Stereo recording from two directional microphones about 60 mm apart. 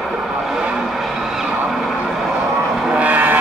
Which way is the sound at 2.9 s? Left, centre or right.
Right.